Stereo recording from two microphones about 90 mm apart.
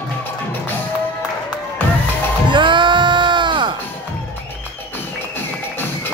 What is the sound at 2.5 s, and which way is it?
Music, 65° right (ahead or behind).